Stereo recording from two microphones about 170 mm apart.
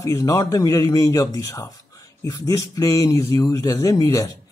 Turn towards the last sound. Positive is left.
turn(degrees=20)  # may be behind; listen again after turning